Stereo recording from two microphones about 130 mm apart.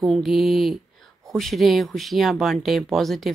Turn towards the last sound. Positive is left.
turn(degrees=0)  # may be behind; listen again after turning